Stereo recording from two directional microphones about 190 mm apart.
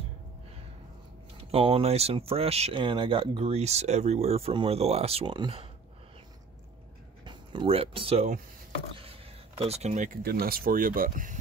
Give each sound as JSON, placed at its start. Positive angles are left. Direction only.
{"t": 1.5, "sound": "speech", "side_deg": -30}
{"t": 7.2, "sound": "speech", "side_deg": -25}